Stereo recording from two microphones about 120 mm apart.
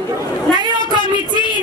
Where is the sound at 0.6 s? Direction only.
35° right (ahead or behind).